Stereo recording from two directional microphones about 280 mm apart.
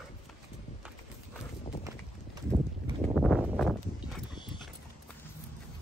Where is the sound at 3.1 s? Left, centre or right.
Centre.